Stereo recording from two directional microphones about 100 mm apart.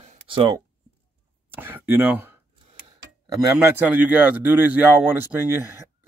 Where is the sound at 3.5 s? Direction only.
20° right (ahead or behind).